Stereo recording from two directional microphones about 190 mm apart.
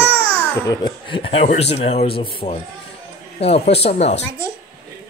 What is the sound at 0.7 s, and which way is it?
Speech, 25° left (ahead or behind).